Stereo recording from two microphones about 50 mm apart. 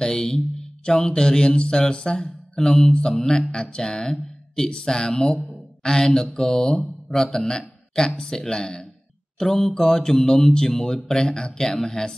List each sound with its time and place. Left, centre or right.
0.0 s speech: centre
2.9 s mantra: centre
3.2 s speech: centre
9.4 s speech: centre